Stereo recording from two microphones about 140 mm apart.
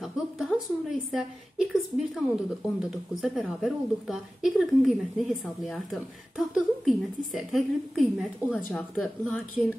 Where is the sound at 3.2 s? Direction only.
Centre (ahead or behind).